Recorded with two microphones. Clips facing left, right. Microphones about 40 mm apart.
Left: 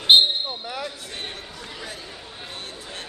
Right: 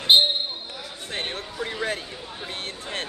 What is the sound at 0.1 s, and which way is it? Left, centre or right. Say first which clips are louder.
Basketball bounce: left 2 dB; left.